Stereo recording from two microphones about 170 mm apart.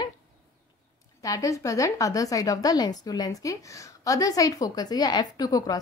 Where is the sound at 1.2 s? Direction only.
20° left (ahead or behind).